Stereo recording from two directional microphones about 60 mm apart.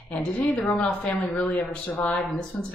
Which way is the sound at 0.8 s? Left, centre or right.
Left.